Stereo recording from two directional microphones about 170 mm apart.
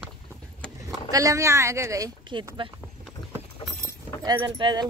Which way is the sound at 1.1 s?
20° right (ahead or behind).